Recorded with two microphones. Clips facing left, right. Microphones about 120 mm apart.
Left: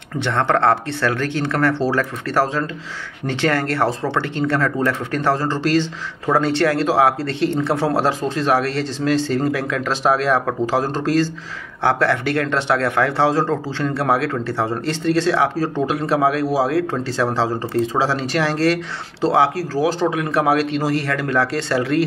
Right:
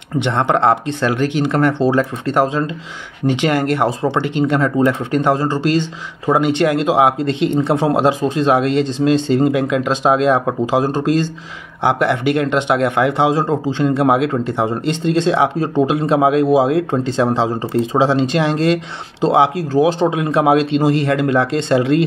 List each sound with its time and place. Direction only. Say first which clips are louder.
0.2 s speech: right 2 dB; 20° right (ahead or behind)